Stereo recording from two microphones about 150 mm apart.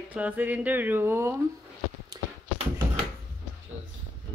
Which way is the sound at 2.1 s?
25° right (ahead or behind).